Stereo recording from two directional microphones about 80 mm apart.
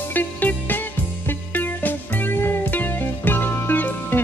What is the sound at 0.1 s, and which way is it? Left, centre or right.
Music, left.